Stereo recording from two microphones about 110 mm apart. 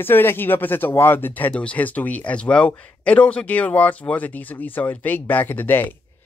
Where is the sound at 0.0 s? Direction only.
20° left (ahead or behind).